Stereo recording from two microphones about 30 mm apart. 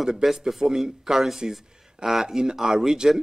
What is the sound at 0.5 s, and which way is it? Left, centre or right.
A man's voice, centre.